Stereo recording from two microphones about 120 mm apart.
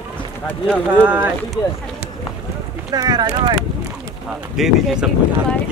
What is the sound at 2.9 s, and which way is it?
Speech, 35° right (ahead or behind).